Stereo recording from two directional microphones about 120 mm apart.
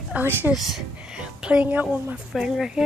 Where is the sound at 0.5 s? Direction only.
5° right (ahead or behind).